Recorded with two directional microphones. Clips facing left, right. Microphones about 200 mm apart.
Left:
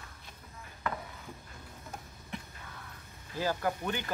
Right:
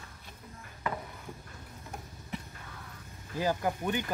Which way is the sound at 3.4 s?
15° right (ahead or behind).